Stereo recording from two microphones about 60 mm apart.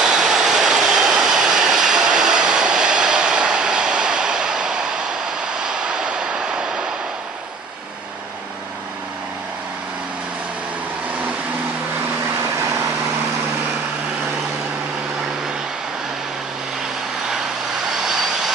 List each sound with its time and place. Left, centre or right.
0.0 s vehicle: centre
17.9 s vehicle: centre